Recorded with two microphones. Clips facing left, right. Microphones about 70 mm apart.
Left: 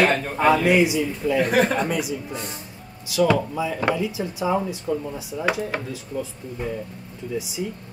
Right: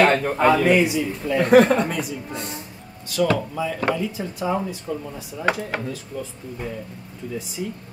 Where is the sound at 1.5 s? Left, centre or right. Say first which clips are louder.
Right 6 dB; right.